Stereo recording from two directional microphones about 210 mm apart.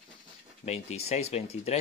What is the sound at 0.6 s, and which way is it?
Speech, 30° left (ahead or behind).